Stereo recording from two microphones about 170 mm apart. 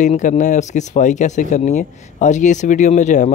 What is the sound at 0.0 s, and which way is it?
Speech, 45° left (ahead or behind).